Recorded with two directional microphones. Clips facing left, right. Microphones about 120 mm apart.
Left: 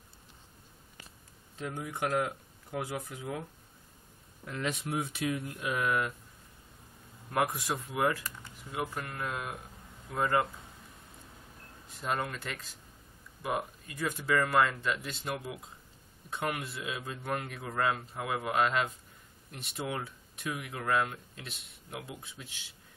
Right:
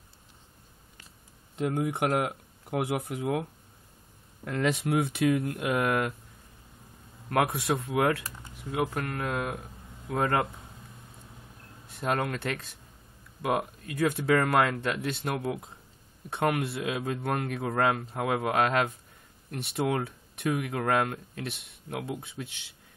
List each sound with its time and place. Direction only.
1.6 s speech: 60° right (ahead or behind)
4.5 s speech: 70° right (ahead or behind)
7.5 s speech: 65° right (ahead or behind)
11.9 s speech: 65° right (ahead or behind)